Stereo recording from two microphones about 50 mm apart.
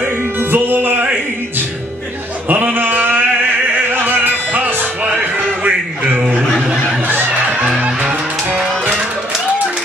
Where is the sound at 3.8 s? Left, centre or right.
Right.